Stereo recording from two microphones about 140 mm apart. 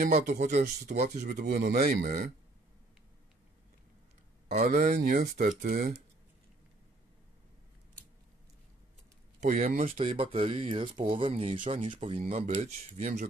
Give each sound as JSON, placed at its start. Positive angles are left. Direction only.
{"t": 0.0, "sound": "speech", "side_deg": -60}
{"t": 1.3, "sound": "speech", "side_deg": -90}
{"t": 4.5, "sound": "speech", "side_deg": -70}
{"t": 9.4, "sound": "speech", "side_deg": -60}
{"t": 9.9, "sound": "speech", "side_deg": -45}
{"t": 11.6, "sound": "speech", "side_deg": -60}